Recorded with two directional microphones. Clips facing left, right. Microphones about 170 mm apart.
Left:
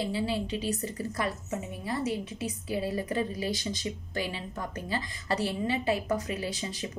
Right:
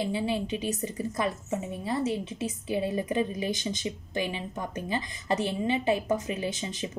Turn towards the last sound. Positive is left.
turn(degrees=-20)  # may be behind; listen again after turning